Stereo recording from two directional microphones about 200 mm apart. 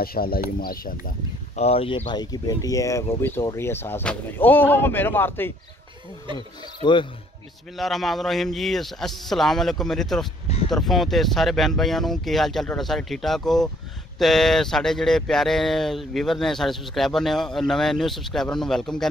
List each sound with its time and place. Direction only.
0.0 s speech: 50° left (ahead or behind)
1.6 s speech: 30° left (ahead or behind); by 5.5 s 10° left (ahead or behind)
6.3 s speech: 25° left (ahead or behind)
7.7 s speech: centre (ahead or behind)